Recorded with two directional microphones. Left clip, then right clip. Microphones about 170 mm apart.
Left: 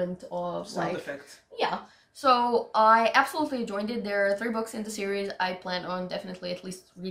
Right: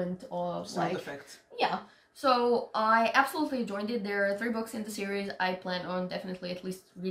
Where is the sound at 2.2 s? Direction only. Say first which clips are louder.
Left 3 dB; 20° left (ahead or behind).